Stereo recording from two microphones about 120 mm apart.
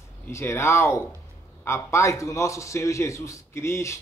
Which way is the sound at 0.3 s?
25° left (ahead or behind).